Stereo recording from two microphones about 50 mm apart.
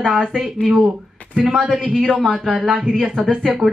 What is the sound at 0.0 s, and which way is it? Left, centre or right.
Speech, centre.